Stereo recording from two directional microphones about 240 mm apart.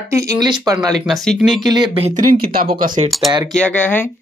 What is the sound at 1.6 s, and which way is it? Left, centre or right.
Speech, centre.